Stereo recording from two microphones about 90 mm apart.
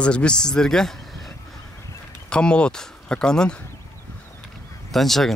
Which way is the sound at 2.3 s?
10° left (ahead or behind).